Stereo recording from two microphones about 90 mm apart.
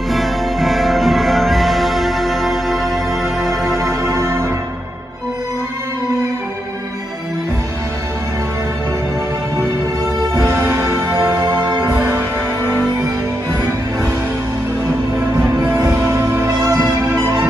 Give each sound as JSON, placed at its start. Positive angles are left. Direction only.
{"t": 0.1, "sound": "music", "side_deg": 0}
{"t": 4.0, "sound": "music", "side_deg": -30}
{"t": 10.3, "sound": "music", "side_deg": -30}
{"t": 16.1, "sound": "music", "side_deg": -30}